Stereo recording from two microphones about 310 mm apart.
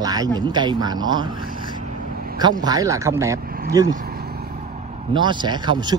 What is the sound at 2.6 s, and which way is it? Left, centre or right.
Speech, centre.